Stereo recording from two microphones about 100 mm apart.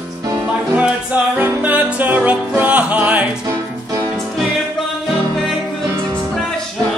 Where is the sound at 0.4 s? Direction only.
15° right (ahead or behind).